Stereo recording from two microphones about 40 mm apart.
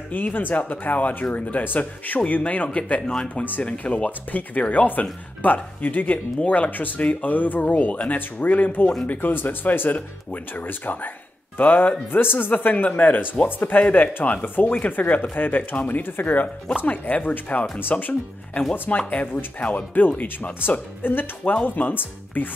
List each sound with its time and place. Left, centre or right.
0.1 s speech: left
3.1 s speech: left
3.6 s speech: left
7.2 s speech: left
11.5 s music: left
12.1 s speech: left
12.5 s speech: left
14.4 s speech: left
16.8 s speech: left
21.0 s speech: left